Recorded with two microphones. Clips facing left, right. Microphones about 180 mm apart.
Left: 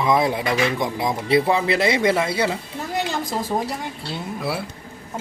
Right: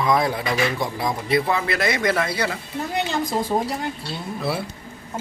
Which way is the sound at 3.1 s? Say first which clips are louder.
Right 2 dB; centre (ahead or behind).